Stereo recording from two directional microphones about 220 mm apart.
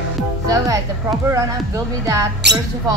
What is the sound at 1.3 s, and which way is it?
Speech, 15° right (ahead or behind).